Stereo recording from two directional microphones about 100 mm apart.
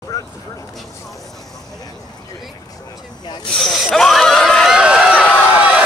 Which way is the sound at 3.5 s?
Centre (ahead or behind).